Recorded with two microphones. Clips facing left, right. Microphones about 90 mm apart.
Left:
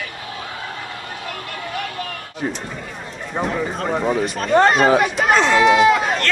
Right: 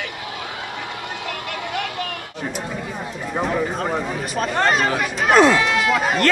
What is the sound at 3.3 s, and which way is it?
Speech, centre (ahead or behind).